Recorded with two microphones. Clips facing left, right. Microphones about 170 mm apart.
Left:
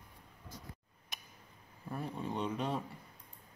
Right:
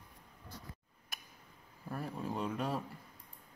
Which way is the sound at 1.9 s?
Centre (ahead or behind).